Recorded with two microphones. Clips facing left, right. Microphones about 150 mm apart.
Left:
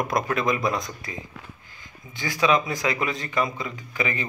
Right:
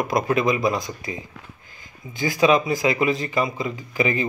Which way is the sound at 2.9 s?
25° right (ahead or behind).